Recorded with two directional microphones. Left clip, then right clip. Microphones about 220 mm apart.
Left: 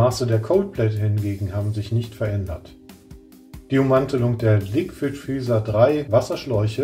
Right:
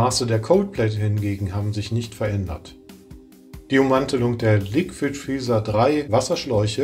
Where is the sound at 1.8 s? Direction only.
35° right (ahead or behind).